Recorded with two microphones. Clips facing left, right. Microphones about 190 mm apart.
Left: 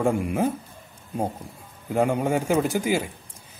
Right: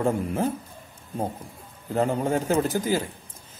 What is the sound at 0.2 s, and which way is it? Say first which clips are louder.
Speech: left 2 dB; 10° left (ahead or behind).